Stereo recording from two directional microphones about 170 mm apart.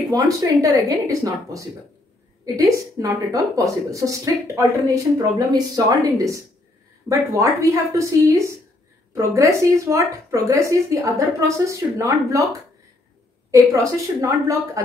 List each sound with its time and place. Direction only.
0.1 s a woman's voice: 20° right (ahead or behind)
14.2 s a woman's voice: 20° right (ahead or behind)